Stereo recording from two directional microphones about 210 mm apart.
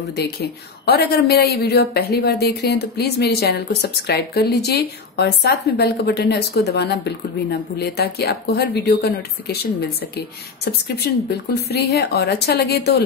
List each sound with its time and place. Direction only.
0.1 s speech: 50° left (ahead or behind)